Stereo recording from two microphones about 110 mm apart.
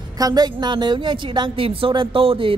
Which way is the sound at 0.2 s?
35° right (ahead or behind).